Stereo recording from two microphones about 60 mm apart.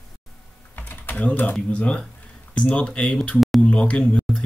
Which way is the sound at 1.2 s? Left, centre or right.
Left.